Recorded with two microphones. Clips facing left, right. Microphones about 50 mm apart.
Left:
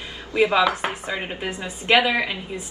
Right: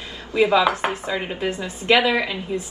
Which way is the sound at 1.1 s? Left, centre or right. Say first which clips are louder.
Right 3 dB; centre.